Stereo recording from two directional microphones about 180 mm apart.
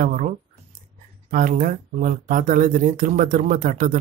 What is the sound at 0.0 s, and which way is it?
Speech, 45° right (ahead or behind).